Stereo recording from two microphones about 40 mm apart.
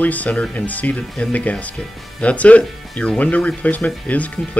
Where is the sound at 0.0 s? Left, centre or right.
Left.